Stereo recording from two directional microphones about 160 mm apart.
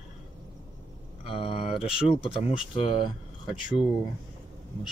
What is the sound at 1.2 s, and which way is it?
Speech, 35° left (ahead or behind).